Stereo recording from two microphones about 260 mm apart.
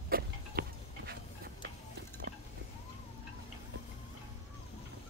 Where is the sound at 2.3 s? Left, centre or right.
Right.